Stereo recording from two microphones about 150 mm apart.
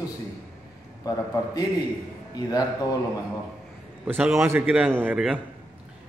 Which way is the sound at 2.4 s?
25° left (ahead or behind).